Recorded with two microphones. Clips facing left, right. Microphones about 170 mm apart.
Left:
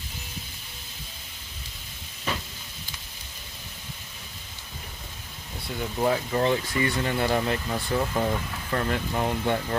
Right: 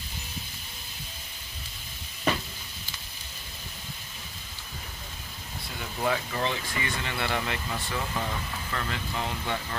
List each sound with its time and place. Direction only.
6.0 s speech: 30° left (ahead or behind)
6.4 s speech: 45° left (ahead or behind)
8.7 s speech: 45° left (ahead or behind)